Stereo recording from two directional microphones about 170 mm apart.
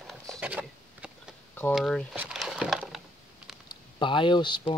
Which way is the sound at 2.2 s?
Centre (ahead or behind).